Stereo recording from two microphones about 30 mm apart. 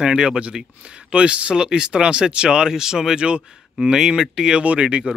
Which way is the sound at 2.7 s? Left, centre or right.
Centre.